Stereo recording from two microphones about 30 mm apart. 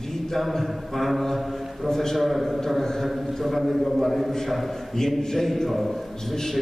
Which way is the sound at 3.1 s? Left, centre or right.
Centre.